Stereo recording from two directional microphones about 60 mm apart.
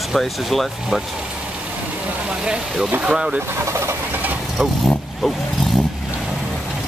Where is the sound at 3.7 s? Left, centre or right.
Right.